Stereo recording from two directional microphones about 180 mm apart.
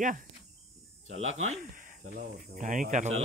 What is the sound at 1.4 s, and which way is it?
Speech, 45° right (ahead or behind).